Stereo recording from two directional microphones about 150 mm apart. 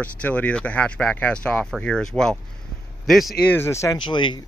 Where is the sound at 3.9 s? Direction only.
30° left (ahead or behind).